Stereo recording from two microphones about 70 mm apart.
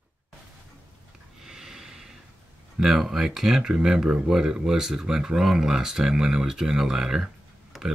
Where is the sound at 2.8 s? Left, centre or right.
Centre.